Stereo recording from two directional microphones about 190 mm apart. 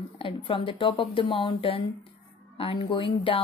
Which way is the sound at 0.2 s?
30° left (ahead or behind).